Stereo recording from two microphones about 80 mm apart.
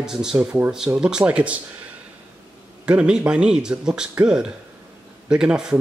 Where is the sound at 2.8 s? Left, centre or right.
Centre.